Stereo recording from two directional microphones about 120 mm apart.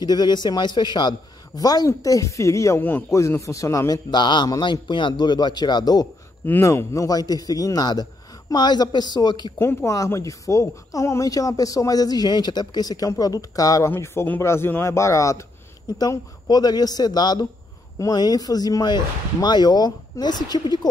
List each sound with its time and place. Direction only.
0.0 s a man's voice: 35° left (ahead or behind)
6.4 s a man's voice: 20° left (ahead or behind); by 9.5 s 35° left (ahead or behind)
9.6 s a man's voice: 20° left (ahead or behind)